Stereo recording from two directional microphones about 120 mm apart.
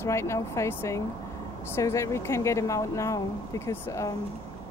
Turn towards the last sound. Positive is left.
turn(degrees=25)  # may be behind; listen again after turning